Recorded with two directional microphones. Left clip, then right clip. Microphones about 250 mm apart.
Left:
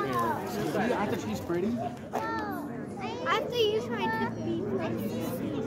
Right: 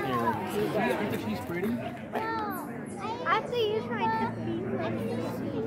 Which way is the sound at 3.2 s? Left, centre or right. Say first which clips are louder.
Even; left.